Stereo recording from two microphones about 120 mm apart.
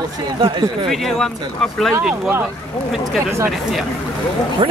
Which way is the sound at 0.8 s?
Centre (ahead or behind).